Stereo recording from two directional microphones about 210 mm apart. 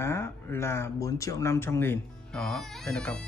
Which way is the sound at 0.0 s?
10° left (ahead or behind).